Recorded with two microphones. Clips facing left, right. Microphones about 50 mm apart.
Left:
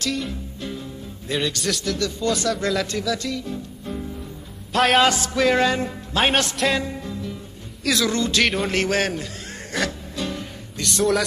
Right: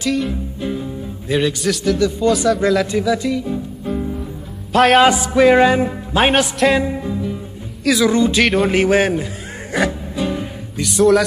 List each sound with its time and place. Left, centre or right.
0.3 s music: centre
1.6 s a man's voice: centre
2.0 s a man's voice: centre
3.0 s music: centre
4.7 s a man's voice: centre
5.0 s music: centre
7.9 s a man's voice: centre
8.6 s music: centre